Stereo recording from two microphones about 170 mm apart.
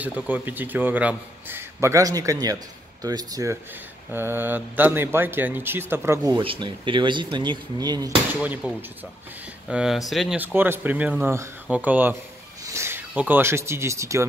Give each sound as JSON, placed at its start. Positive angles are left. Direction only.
{"t": 0.0, "sound": "a man's voice", "side_deg": -10}
{"t": 6.3, "sound": "speech", "side_deg": -30}
{"t": 8.3, "sound": "a man's voice", "side_deg": -10}
{"t": 10.4, "sound": "a man's voice", "side_deg": -10}